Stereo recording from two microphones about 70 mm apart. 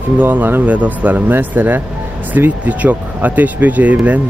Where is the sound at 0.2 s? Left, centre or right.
Right.